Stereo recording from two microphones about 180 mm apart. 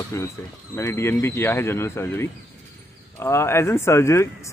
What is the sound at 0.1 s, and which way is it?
Speech, 15° left (ahead or behind).